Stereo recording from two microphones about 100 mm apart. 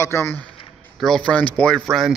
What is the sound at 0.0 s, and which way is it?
Speech, 25° left (ahead or behind).